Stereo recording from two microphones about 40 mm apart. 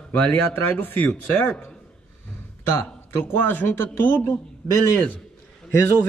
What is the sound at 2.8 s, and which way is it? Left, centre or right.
Speech, left.